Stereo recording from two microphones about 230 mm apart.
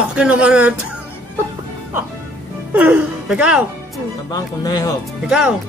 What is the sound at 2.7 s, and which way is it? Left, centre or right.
Speech, centre.